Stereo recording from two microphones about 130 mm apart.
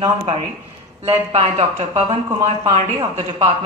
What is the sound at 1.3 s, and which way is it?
A woman's voice, 55° right (ahead or behind).